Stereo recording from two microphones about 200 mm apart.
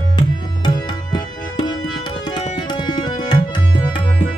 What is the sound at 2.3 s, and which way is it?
Tabla, 20° left (ahead or behind).